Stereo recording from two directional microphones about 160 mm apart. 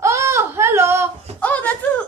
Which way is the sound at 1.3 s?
10° left (ahead or behind).